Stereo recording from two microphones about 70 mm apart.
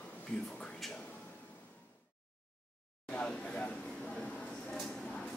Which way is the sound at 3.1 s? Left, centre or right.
Centre.